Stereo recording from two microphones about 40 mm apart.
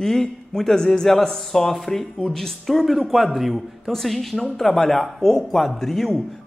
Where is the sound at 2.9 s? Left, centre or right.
Centre.